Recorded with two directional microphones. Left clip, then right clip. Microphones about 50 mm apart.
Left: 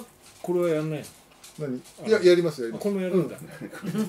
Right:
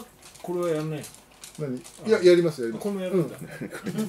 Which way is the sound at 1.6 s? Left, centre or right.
Centre.